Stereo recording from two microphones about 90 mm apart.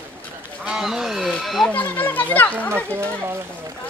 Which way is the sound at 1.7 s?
20° left (ahead or behind).